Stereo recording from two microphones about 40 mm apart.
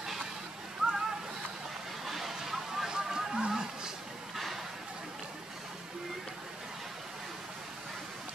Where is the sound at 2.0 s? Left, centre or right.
Centre.